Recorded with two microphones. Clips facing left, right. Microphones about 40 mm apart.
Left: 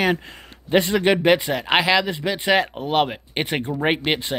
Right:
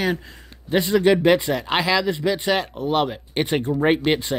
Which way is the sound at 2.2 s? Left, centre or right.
Centre.